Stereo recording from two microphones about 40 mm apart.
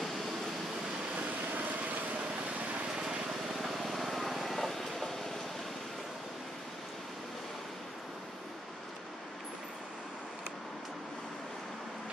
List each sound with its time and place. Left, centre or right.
1.2 s vehicle: right
3.5 s vehicle: centre